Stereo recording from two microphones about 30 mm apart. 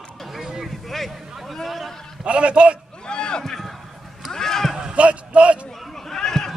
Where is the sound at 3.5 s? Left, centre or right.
Centre.